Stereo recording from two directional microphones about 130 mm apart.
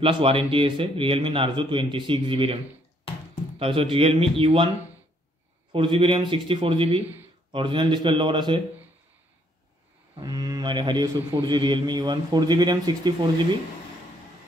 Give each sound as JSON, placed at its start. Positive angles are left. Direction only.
{"t": 0.0, "sound": "a man's voice", "side_deg": -45}
{"t": 5.7, "sound": "a man's voice", "side_deg": -40}
{"t": 10.2, "sound": "a man's voice", "side_deg": -30}